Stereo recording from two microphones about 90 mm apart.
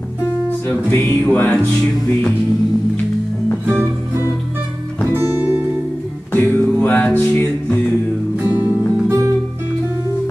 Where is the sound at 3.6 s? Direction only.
25° right (ahead or behind).